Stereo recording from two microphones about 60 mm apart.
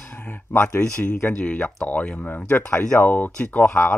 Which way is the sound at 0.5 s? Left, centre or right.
Left.